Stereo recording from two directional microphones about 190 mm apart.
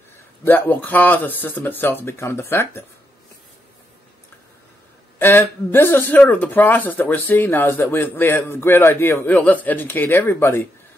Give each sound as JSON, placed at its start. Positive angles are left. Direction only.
{"t": 0.5, "sound": "speech", "side_deg": 10}
{"t": 5.2, "sound": "speech", "side_deg": 10}